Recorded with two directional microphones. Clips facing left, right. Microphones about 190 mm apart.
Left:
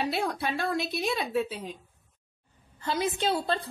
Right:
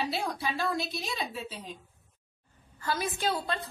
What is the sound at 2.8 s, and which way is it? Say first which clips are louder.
Speech: left 3 dB; 25° left (ahead or behind).